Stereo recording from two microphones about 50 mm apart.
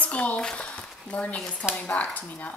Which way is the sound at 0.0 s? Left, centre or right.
Left.